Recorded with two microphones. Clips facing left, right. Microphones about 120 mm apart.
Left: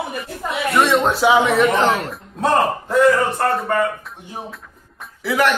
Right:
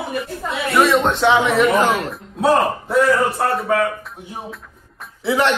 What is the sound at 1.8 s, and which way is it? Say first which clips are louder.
A man's voice: even; 10° right (ahead or behind).